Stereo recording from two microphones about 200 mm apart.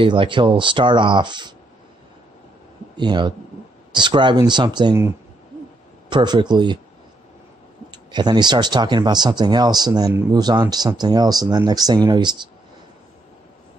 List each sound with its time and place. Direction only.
0.0 s speech: 25° right (ahead or behind)
3.0 s speech: 20° right (ahead or behind)
7.9 s speech: 20° right (ahead or behind)